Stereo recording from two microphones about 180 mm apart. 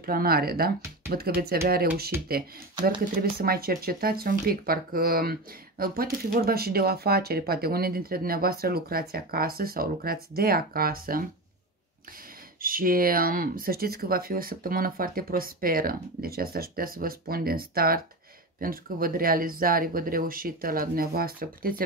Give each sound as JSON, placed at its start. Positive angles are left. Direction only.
{"t": 0.0, "sound": "speech", "side_deg": -55}
{"t": 12.6, "sound": "speech", "side_deg": -50}